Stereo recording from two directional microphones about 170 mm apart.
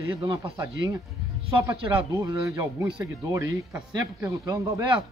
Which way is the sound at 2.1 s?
20° right (ahead or behind).